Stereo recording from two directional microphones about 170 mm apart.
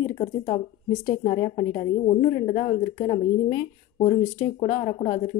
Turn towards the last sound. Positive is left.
turn(degrees=35)  # may be behind; listen again after turning